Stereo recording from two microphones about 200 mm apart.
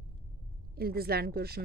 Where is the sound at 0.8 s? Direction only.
50° right (ahead or behind).